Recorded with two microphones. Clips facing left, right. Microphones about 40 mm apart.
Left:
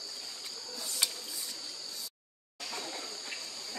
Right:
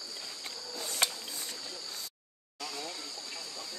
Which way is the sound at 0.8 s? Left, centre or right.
Right.